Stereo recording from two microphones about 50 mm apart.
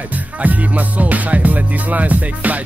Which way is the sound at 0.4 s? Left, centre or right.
Right.